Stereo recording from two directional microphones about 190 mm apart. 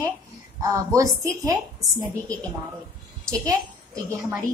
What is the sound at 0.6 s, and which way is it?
A woman's voice, 15° right (ahead or behind).